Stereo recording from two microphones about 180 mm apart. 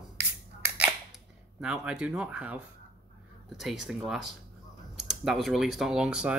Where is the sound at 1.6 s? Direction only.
5° right (ahead or behind).